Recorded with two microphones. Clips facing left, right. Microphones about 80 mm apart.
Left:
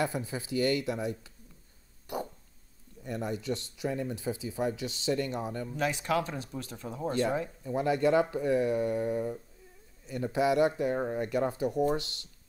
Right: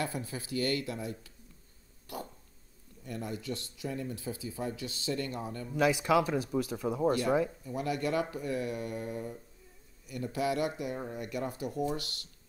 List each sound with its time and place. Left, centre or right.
0.0 s speech: left
3.1 s speech: left
5.7 s speech: centre
7.6 s speech: left
10.8 s speech: left